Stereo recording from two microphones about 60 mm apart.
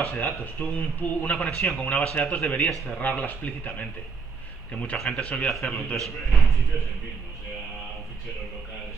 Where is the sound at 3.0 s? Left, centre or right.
Left.